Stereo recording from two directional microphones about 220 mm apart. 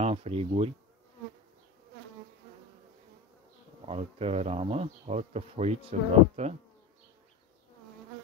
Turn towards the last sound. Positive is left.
turn(degrees=-30)  # may be behind; listen again after turning